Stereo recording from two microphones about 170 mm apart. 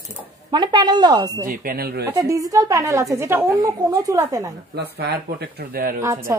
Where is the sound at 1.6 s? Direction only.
60° right (ahead or behind).